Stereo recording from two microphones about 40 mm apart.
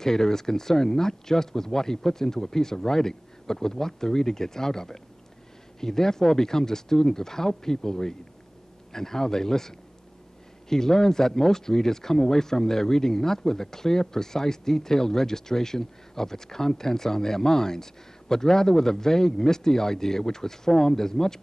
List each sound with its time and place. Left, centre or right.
0.0 s speech: centre